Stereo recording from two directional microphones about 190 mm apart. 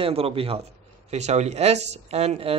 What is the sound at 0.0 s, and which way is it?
A man's voice, 30° right (ahead or behind).